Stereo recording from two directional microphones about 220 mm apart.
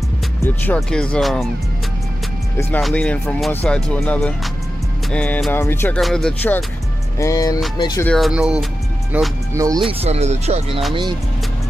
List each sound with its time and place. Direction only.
0.7 s speech: 5° left (ahead or behind)
2.5 s speech: 5° left (ahead or behind)
8.1 s speech: centre (ahead or behind)
9.8 s speech: 30° right (ahead or behind)